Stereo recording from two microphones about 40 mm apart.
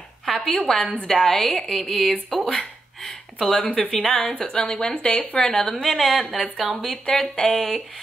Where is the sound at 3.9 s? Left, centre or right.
Centre.